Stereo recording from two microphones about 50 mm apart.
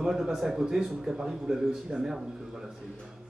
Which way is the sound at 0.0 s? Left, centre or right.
Centre.